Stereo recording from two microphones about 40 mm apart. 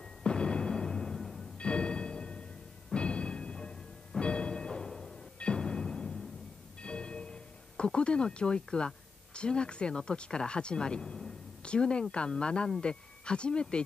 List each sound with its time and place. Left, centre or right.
0.2 s music: left; by 1.4 s centre
1.6 s music: left
6.8 s speech: left
11.6 s speech: left